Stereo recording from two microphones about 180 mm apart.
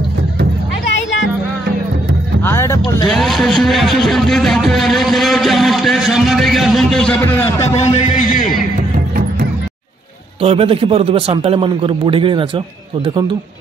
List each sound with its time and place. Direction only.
2.4 s vehicle: 15° left (ahead or behind)
3.1 s speech: centre (ahead or behind)
7.2 s a man's voice: 15° left (ahead or behind)
7.7 s a man's voice: 40° left (ahead or behind)
10.4 s a man's voice: 30° right (ahead or behind)